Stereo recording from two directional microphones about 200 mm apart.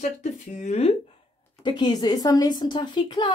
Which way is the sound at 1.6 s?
25° left (ahead or behind).